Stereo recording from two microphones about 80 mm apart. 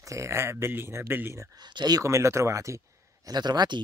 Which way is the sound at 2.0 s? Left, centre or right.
Right.